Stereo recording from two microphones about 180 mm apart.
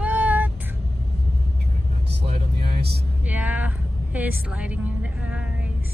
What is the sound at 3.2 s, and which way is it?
A woman's voice, 10° right (ahead or behind).